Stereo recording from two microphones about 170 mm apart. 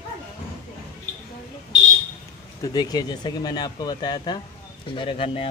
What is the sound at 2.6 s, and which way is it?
A man's voice, 25° left (ahead or behind).